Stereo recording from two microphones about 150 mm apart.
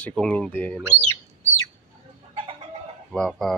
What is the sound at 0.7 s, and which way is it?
Speech, 15° right (ahead or behind).